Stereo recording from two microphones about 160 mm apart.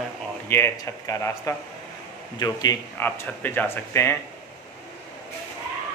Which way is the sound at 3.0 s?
15° left (ahead or behind).